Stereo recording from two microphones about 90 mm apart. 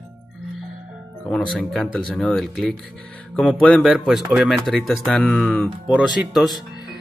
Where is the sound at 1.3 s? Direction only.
5° left (ahead or behind).